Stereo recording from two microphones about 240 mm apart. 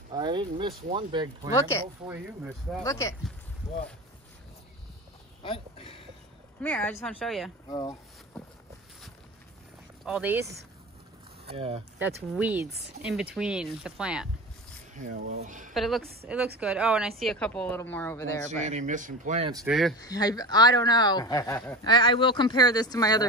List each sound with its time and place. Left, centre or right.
0.1 s speech: centre
1.5 s speech: centre
2.0 s speech: centre
2.8 s speech: centre
5.4 s a sound: left
6.6 s speech: centre
10.0 s speech: centre
11.4 s speech: right
12.4 s speech: centre
15.0 s speech: right
15.7 s speech: centre
18.6 s speech: right
19.6 s speech: centre
20.0 s speech: centre